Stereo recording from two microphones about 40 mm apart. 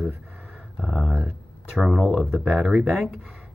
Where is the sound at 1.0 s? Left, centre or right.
Right.